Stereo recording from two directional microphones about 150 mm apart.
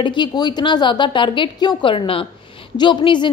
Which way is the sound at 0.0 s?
30° left (ahead or behind).